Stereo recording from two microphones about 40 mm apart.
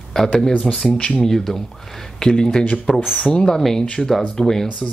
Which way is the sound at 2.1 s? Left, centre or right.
Centre.